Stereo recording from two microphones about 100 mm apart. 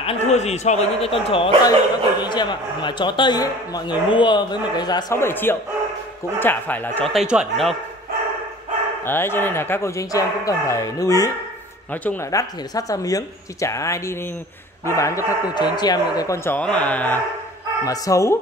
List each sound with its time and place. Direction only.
0.0 s speech: 85° left; by 1.5 s 65° left (ahead or behind)
1.6 s speech: 45° left (ahead or behind)
5.1 s speech: 25° left (ahead or behind)
7.1 s speech: 5° right (ahead or behind)
9.0 s speech: 20° left (ahead or behind)
11.9 s speech: 15° left (ahead or behind)
12.2 s speech: 35° left (ahead or behind)
15.5 s speech: 45° left (ahead or behind)
16.6 s speech: 15° left (ahead or behind)
17.8 s speech: 35° left (ahead or behind)